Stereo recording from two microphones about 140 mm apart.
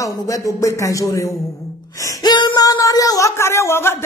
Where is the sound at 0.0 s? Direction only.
25° left (ahead or behind).